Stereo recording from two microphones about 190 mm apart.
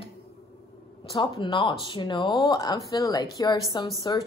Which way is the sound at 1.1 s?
25° left (ahead or behind).